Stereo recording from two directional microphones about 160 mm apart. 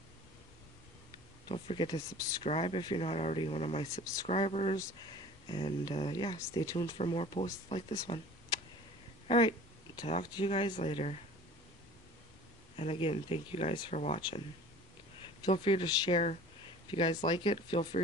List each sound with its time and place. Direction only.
1.5 s speech: 35° left (ahead or behind)
2.4 s speech: 35° left (ahead or behind)
3.8 s speech: 25° left (ahead or behind)
4.3 s speech: 40° left (ahead or behind)
9.3 s a sound: 30° left (ahead or behind)
10.3 s speech: 35° left (ahead or behind)
12.7 s speech: 35° left (ahead or behind)
15.2 s speech: 35° left (ahead or behind)